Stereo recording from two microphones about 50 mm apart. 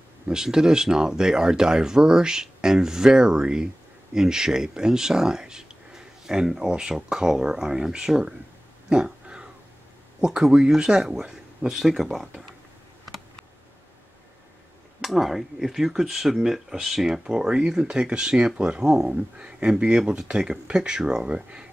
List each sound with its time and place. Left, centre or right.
0.3 s speech: centre
8.8 s dog: centre
10.2 s speech: centre
15.0 s speech: centre